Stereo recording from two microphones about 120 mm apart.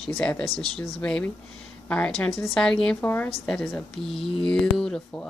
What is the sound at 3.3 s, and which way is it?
Speech, 5° left (ahead or behind).